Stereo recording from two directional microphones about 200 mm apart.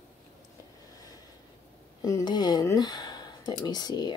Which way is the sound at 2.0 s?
20° left (ahead or behind).